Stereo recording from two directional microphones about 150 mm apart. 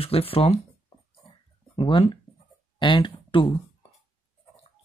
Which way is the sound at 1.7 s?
35° left (ahead or behind).